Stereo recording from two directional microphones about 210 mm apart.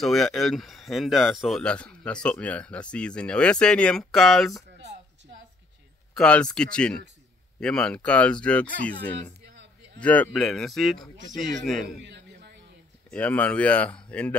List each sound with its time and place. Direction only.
0.0 s speech: centre (ahead or behind)
6.1 s speech: 5° left (ahead or behind)
9.9 s speech: 5° left (ahead or behind)
12.1 s a sound: 55° right (ahead or behind)
13.1 s speech: 5° left (ahead or behind)